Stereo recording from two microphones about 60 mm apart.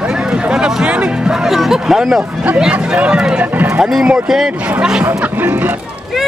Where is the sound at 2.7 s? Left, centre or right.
Right.